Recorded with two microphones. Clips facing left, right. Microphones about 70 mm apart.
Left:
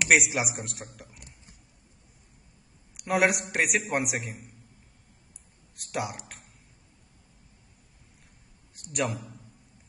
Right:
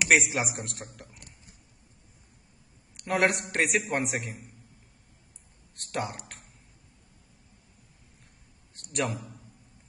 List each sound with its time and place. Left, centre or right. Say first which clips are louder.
0.0 s a man's voice: even; centre
3.0 s a man's voice: left 1 dB; centre
5.8 s a man's voice: even; centre
8.9 s a man's voice: left 1 dB; centre